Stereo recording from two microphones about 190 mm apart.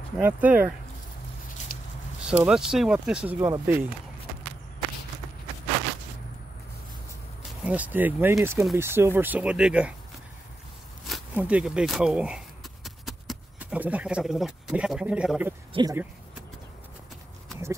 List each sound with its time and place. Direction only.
0.2 s speech: 10° right (ahead or behind)
2.2 s speech: 5° right (ahead or behind)
7.6 s speech: 10° right (ahead or behind)
11.3 s speech: 5° right (ahead or behind)
15.7 s speech: 20° right (ahead or behind)